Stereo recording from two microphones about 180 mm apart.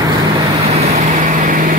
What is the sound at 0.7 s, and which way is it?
Vehicle, 40° right (ahead or behind).